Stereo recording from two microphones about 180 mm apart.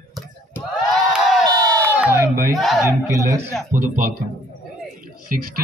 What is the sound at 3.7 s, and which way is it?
Speech, 45° right (ahead or behind).